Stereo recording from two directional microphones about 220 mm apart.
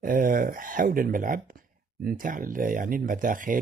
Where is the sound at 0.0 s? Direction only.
40° right (ahead or behind).